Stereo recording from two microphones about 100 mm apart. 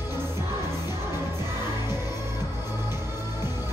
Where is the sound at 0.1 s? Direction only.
25° right (ahead or behind).